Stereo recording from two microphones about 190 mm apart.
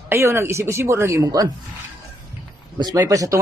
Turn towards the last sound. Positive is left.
turn(degrees=-15)  # may be behind; listen again after turning